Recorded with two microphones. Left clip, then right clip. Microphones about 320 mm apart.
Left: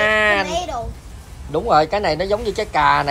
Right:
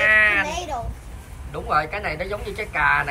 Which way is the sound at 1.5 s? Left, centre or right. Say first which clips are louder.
Left 7 dB; centre.